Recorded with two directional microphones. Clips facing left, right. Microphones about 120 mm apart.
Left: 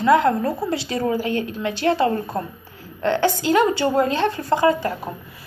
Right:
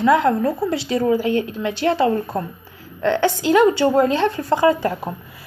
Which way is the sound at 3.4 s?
15° right (ahead or behind).